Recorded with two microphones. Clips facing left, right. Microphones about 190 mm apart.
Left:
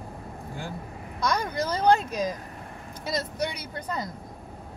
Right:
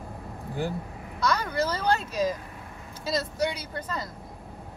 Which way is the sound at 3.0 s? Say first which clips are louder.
Right 2 dB; 20° left (ahead or behind).